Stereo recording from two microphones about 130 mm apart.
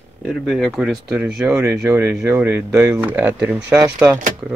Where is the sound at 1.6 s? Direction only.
20° right (ahead or behind).